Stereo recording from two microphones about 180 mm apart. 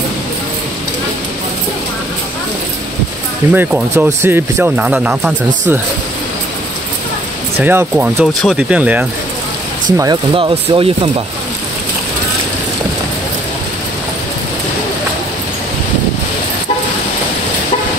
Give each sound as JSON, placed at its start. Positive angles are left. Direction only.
{"t": 3.5, "sound": "speech", "side_deg": -10}
{"t": 7.5, "sound": "speech", "side_deg": -10}
{"t": 9.9, "sound": "speech", "side_deg": -25}